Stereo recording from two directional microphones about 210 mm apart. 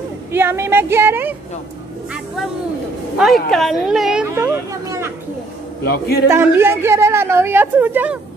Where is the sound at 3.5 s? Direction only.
Centre (ahead or behind).